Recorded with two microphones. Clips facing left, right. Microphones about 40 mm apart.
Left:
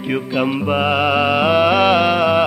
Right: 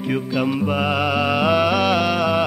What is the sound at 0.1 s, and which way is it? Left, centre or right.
Music, left.